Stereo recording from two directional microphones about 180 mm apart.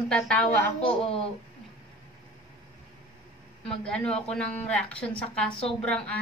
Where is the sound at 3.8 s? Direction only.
5° left (ahead or behind).